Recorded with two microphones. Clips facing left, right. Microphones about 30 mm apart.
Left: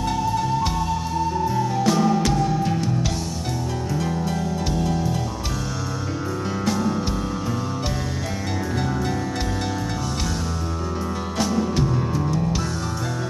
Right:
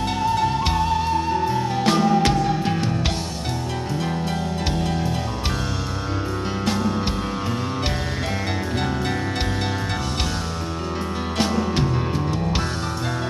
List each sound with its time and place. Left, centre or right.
0.4 s music: right
4.7 s music: right
11.3 s music: right